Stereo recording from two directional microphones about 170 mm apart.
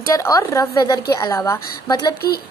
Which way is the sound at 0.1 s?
20° left (ahead or behind).